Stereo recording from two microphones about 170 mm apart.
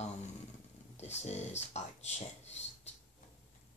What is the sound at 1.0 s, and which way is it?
Speech, 40° left (ahead or behind).